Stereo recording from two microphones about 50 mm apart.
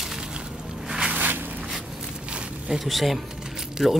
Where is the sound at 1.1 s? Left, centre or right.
Right.